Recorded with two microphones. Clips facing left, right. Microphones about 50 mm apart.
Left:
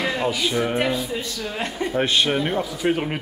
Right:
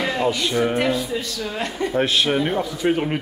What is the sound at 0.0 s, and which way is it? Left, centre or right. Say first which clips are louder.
Speech: right 1 dB; centre.